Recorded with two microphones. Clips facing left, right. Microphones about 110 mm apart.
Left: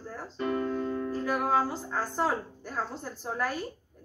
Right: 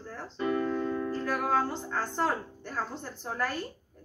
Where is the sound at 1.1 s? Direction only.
5° left (ahead or behind).